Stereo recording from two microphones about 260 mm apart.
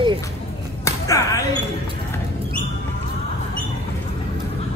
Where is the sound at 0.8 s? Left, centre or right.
Centre.